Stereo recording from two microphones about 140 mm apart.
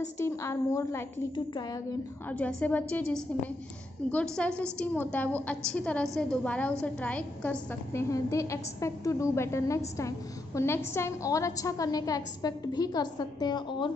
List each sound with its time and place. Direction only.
0.2 s a woman's voice: 20° left (ahead or behind)
1.3 s a woman's voice: 30° left (ahead or behind)
2.2 s a woman's voice: 10° left (ahead or behind); by 13.9 s 35° left (ahead or behind)